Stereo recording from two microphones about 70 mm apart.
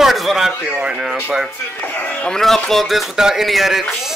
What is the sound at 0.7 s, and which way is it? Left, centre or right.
Speech, centre.